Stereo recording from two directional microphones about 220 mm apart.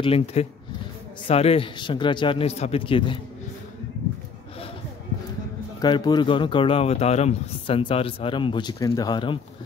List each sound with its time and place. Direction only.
0.0 s speech: 25° left (ahead or behind)
5.8 s speech: 20° left (ahead or behind)